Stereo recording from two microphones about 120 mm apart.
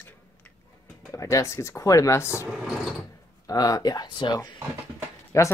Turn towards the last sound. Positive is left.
turn(degrees=25)  # may be behind; listen again after turning